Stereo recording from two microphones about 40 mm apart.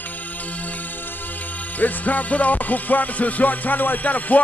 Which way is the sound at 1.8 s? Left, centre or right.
Left.